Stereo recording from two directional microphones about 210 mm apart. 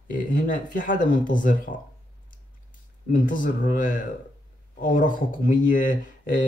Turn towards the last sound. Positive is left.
turn(degrees=40)  # may be behind; listen again after turning